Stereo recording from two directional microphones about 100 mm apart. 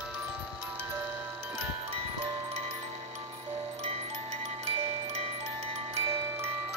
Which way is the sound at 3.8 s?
85° right.